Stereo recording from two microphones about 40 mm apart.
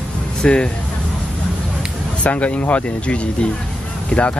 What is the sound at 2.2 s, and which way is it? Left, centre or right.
Speech, left.